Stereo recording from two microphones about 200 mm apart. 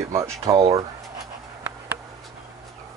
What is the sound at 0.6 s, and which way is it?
Speech, 30° right (ahead or behind).